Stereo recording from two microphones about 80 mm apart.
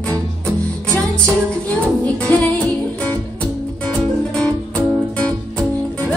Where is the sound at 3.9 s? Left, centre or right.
Centre.